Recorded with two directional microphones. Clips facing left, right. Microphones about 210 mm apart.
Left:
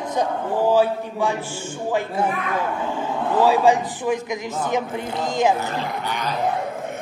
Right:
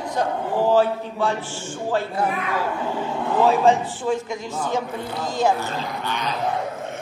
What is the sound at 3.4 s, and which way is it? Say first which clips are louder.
A man's voice: even; 15° left (ahead or behind).